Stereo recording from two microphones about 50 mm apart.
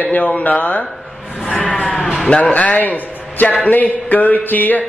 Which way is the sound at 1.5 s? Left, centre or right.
Left.